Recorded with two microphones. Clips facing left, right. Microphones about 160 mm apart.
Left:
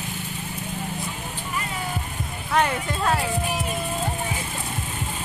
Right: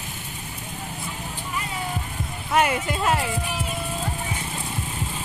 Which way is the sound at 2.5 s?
10° right (ahead or behind).